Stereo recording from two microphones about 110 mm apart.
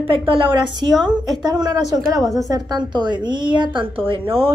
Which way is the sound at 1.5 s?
40° right (ahead or behind).